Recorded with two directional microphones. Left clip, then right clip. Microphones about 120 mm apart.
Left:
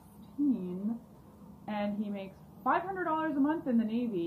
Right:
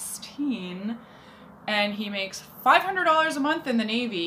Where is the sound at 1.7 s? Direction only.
20° right (ahead or behind).